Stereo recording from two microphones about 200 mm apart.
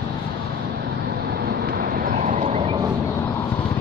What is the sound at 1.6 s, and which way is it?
Vehicle, 45° right (ahead or behind).